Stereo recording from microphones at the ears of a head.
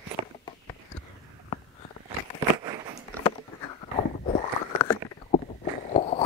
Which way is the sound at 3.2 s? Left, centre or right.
Left.